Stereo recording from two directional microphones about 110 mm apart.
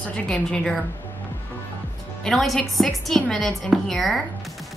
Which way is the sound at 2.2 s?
Centre (ahead or behind).